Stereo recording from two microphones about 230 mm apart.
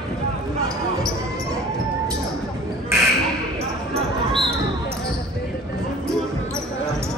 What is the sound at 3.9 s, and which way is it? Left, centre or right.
Basketball bounce, right.